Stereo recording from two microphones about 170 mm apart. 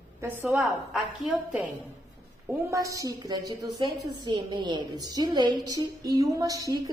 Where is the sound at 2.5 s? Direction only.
20° right (ahead or behind).